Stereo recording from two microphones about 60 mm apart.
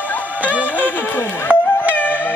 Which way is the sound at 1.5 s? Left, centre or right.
Right.